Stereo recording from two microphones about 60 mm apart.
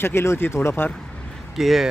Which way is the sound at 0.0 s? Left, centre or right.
Left.